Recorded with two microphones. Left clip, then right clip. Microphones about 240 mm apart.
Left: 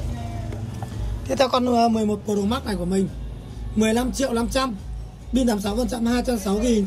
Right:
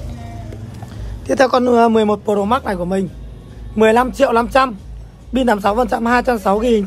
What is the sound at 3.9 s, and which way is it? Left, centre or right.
Speech, centre.